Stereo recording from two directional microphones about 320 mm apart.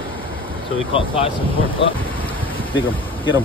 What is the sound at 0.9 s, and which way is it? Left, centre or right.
Speech, centre.